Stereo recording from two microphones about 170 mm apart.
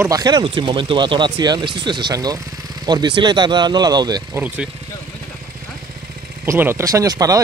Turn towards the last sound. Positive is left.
turn(degrees=-20)  # may be behind; listen again after turning